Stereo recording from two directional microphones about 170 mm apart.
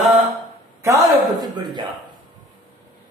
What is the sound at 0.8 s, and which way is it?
Speech, 20° right (ahead or behind).